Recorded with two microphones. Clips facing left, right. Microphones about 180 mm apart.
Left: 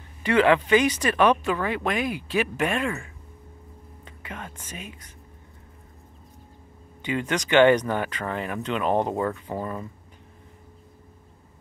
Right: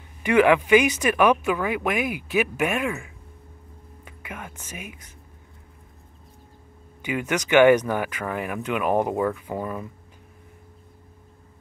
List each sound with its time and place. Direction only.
0.2 s speech: 10° right (ahead or behind)
7.0 s speech: 10° right (ahead or behind)